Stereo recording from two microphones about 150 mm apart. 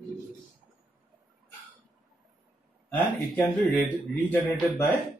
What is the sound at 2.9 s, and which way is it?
Speech, 10° left (ahead or behind).